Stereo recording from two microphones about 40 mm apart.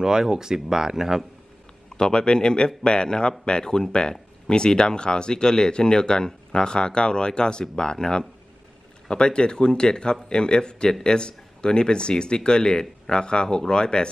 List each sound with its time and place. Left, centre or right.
0.0 s speech: centre
2.0 s speech: centre